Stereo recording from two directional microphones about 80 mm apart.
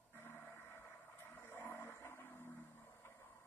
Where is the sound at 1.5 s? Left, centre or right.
Left.